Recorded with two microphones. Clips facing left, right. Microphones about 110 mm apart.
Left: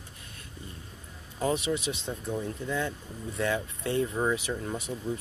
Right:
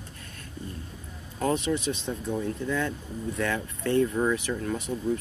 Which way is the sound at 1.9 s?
25° left (ahead or behind).